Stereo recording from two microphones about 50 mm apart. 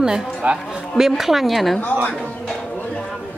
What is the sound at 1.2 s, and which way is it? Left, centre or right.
Speech, centre.